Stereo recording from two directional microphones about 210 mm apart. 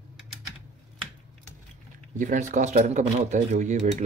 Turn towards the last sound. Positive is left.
turn(degrees=-35)  # may be behind; listen again after turning